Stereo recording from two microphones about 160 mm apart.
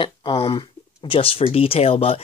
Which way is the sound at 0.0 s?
30° left (ahead or behind).